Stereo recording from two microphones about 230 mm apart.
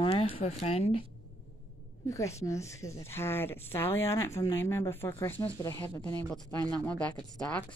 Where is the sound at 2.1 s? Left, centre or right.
Centre.